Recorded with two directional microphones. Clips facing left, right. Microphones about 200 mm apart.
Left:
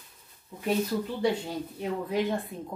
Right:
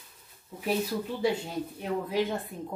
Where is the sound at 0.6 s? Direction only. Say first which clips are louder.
Left 2 dB; 10° right (ahead or behind).